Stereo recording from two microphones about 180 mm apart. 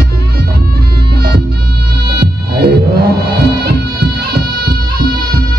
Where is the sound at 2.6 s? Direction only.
60° right (ahead or behind).